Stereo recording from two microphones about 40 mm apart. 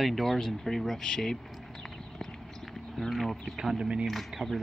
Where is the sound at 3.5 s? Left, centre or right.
Centre.